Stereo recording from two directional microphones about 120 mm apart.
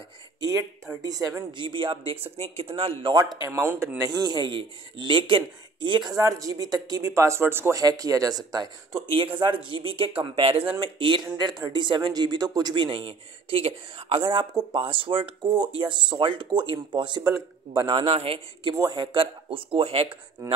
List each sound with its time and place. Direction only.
0.4 s speech: 25° right (ahead or behind)
1.6 s speech: 45° right (ahead or behind)
2.3 s speech: 55° right (ahead or behind); by 3.3 s 35° right (ahead or behind)
3.4 s speech: 20° right (ahead or behind)
4.0 s speech: 35° right (ahead or behind)
14.5 s speech: 35° right (ahead or behind)
14.8 s speech: 45° right (ahead or behind)
17.2 s speech: 25° right (ahead or behind)
18.1 s speech: 50° right (ahead or behind)